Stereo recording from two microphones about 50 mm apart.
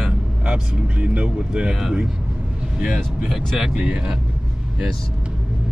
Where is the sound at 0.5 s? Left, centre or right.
Right; by 2.0 s centre.